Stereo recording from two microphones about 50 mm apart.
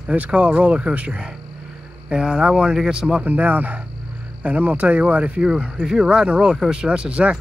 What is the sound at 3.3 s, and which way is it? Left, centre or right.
Speech, right.